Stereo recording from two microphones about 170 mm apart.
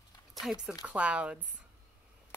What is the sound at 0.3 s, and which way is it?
Speech, centre (ahead or behind).